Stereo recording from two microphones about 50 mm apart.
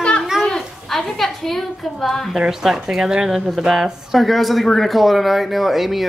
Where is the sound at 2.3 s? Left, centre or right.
Centre.